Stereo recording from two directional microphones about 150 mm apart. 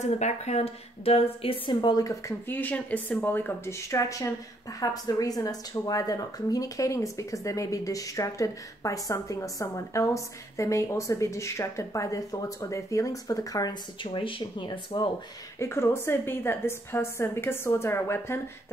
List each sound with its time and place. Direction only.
0.0 s speech: 45° left (ahead or behind); by 15.0 s 30° left (ahead or behind)
15.6 s a woman's voice: 15° left (ahead or behind)